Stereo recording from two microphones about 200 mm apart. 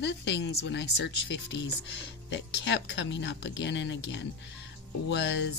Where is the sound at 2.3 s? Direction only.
65° left (ahead or behind).